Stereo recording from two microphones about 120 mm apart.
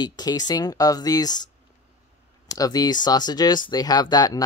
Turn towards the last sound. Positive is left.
turn(degrees=30)  # may be behind; listen again after turning